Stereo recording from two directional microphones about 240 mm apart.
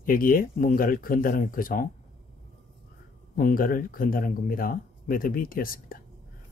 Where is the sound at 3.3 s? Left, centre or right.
Left.